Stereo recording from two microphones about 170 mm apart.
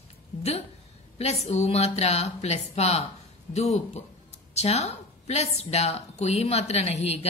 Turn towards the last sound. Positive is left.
turn(degrees=40)  # may be behind; listen again after turning